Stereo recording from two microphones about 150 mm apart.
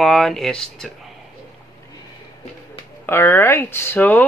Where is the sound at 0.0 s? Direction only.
5° left (ahead or behind).